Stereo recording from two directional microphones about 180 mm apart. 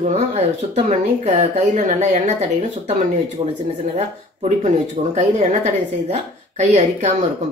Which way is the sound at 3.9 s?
40° right (ahead or behind).